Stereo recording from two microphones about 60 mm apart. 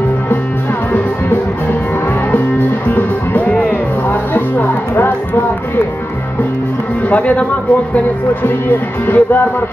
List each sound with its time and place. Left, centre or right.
2.9 s music: left
7.1 s speech: left
8.6 s music: left